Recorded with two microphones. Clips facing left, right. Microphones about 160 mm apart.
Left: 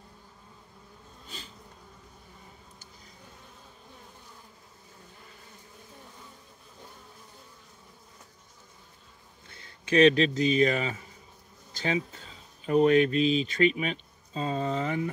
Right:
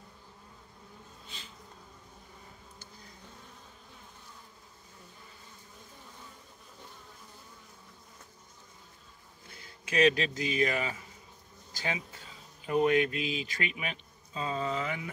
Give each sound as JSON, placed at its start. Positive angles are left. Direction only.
{"t": 9.8, "sound": "a man's voice", "side_deg": 30}